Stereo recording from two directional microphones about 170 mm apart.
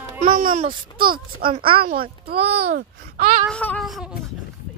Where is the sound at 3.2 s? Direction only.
60° right (ahead or behind).